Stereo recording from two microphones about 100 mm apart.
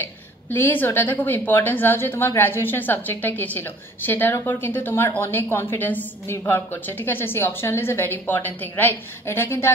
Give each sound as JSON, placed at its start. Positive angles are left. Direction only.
{"t": 0.0, "sound": "a woman's voice", "side_deg": 20}